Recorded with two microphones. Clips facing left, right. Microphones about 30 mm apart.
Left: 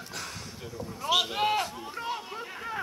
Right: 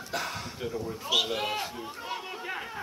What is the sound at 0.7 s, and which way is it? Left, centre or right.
Speech, centre.